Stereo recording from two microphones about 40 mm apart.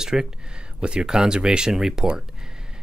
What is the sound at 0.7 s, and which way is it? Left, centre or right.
Speech, right.